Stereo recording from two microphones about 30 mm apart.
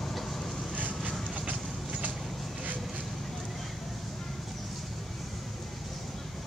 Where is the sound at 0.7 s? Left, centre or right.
Right.